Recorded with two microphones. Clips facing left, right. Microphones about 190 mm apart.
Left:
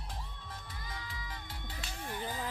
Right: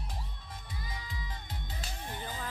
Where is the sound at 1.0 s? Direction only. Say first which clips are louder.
Right 1 dB; 20° right (ahead or behind).